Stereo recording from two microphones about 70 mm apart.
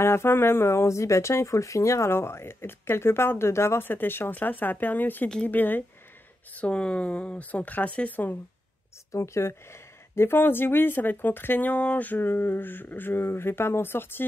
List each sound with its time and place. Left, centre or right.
0.0 s speech: left
6.5 s speech: centre
9.1 s speech: left